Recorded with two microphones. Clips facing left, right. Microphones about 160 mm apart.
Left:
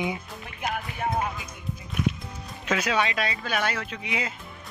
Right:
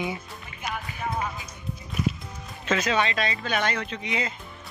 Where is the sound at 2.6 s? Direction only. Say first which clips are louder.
Right 1 dB; 10° left (ahead or behind).